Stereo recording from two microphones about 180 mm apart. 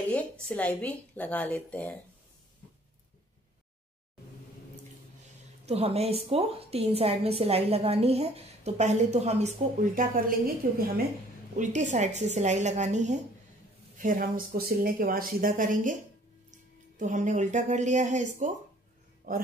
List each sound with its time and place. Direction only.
0.1 s a woman's voice: 5° left (ahead or behind)
5.7 s a woman's voice: 35° right (ahead or behind)
10.6 s speech: 50° right (ahead or behind)
11.5 s a woman's voice: 40° right (ahead or behind)